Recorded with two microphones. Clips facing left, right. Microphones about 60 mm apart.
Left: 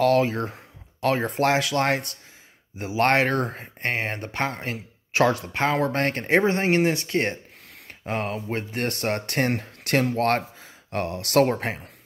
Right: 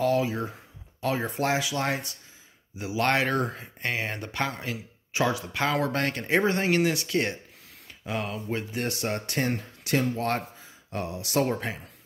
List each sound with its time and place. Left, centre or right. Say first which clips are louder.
0.0 s speech: left 5 dB; left
3.0 s speech: left 4 dB; left
5.1 s speech: left 5 dB; left
5.4 s speech: left 3 dB; left
6.4 s speech: left 3 dB; left